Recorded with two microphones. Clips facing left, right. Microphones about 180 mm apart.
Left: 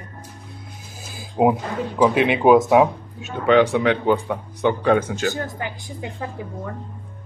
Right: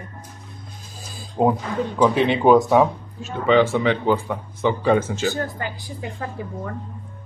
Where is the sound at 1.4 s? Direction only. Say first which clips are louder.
Left 1 dB; 10° left (ahead or behind).